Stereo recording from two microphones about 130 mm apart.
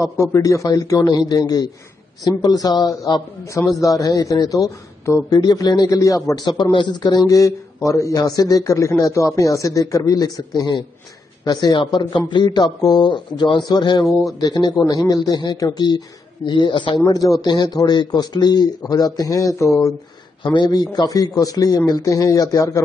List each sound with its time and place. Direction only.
0.0 s a man's voice: 25° left (ahead or behind)
17.0 s a man's voice: 25° left (ahead or behind)